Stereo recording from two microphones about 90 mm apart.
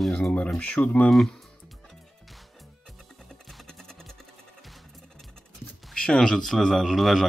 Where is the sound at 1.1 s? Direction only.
Centre (ahead or behind).